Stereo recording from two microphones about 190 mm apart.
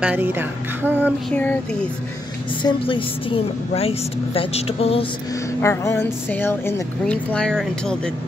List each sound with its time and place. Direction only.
0.0 s speech: 10° right (ahead or behind)
1.3 s speech: 10° left (ahead or behind)
2.6 s a woman's voice: 25° left (ahead or behind)
5.6 s speech: 15° left (ahead or behind)